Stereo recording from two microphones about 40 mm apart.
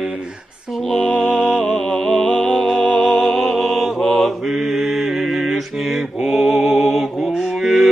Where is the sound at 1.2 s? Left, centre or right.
Centre.